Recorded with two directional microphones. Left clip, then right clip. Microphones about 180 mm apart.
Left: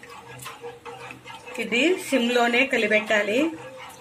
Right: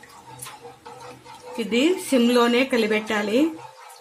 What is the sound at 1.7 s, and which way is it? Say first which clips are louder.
Speech: right 1 dB; 65° right (ahead or behind).